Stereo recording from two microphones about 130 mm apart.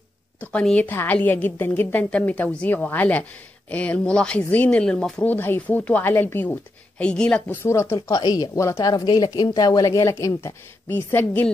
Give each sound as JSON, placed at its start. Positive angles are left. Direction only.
{"t": 0.4, "sound": "a woman's voice", "side_deg": 10}
{"t": 7.6, "sound": "speech", "side_deg": 20}
{"t": 8.1, "sound": "speech", "side_deg": 30}